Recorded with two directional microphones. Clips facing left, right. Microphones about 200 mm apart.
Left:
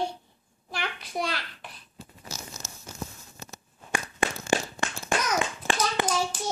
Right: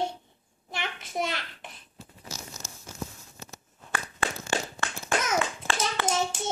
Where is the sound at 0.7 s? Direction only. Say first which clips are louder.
Left 1 dB; 20° right (ahead or behind).